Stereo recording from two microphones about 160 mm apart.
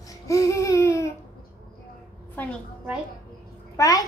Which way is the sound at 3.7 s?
20° left (ahead or behind).